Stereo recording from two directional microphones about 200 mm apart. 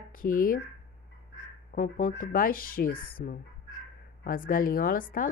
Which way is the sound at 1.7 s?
40° left (ahead or behind).